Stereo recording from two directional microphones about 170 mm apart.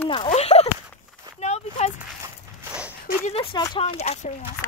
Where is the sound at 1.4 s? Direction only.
40° left (ahead or behind).